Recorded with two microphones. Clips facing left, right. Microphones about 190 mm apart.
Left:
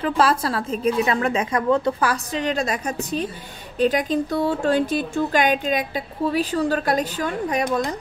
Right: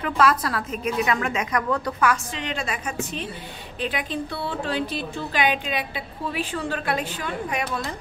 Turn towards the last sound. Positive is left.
turn(degrees=40)  # may be behind; listen again after turning